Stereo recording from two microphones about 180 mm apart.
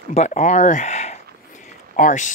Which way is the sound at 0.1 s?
40° left (ahead or behind).